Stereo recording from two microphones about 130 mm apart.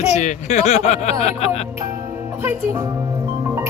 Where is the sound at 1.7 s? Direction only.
20° right (ahead or behind).